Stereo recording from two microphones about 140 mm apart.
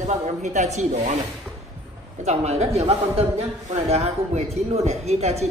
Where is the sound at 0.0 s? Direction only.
55° right (ahead or behind).